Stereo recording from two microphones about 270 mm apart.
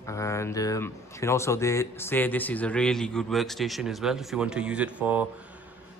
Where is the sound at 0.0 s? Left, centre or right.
Centre.